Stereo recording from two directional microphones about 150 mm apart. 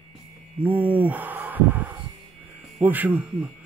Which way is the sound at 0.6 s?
10° right (ahead or behind).